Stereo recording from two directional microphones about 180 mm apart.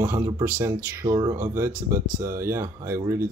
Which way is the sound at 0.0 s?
15° right (ahead or behind).